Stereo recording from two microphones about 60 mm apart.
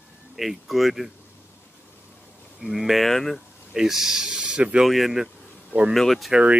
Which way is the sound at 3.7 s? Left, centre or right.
Centre.